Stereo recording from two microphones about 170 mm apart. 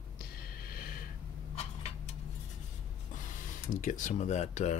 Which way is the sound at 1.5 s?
35° left (ahead or behind).